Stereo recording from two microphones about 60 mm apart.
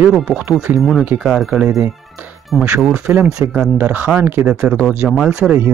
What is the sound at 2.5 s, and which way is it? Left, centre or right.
Speech, centre.